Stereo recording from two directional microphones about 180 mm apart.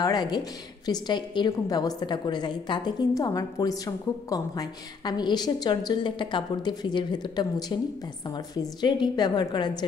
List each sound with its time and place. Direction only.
0.0 s a woman's voice: 20° left (ahead or behind)
8.8 s a woman's voice: 25° left (ahead or behind)